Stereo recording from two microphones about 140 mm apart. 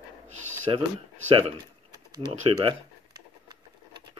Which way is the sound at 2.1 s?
30° right (ahead or behind).